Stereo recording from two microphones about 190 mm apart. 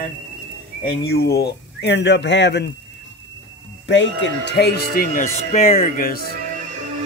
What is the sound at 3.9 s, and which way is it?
Speech, 70° left (ahead or behind).